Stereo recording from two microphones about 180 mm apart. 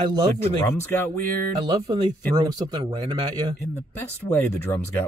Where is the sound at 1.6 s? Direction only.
25° right (ahead or behind).